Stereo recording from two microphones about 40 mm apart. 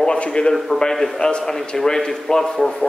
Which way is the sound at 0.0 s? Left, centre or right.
Left.